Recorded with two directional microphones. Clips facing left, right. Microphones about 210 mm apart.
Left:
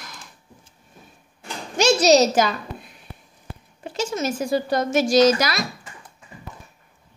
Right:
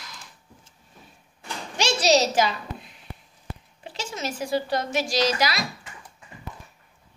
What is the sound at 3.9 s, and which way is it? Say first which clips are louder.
Speech: left 7 dB; 45° left (ahead or behind).